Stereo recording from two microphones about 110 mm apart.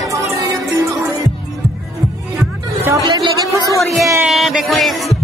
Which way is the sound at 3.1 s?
40° right (ahead or behind).